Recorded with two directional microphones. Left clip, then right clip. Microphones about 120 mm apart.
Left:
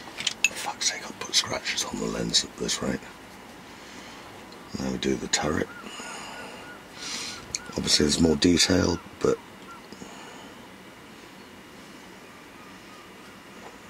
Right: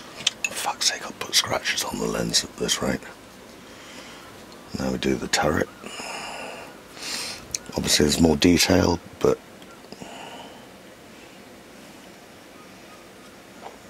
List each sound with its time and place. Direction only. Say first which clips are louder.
0.5 s speech: right 4 dB; 35° right (ahead or behind)
4.7 s speech: right 3 dB; 35° right (ahead or behind)
7.0 s a sound: right 3 dB; 35° right (ahead or behind)